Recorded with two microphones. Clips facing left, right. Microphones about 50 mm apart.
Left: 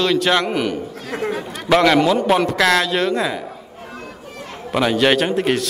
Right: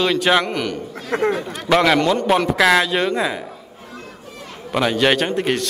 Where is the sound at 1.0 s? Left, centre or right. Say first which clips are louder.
Right 6 dB; right.